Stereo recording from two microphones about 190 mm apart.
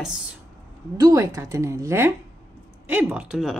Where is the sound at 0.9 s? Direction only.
20° right (ahead or behind); by 3.5 s 5° right (ahead or behind).